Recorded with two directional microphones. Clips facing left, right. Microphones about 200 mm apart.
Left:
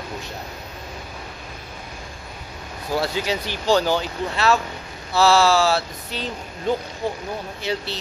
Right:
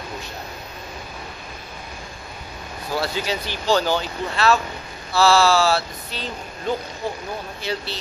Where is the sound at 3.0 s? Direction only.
15° left (ahead or behind).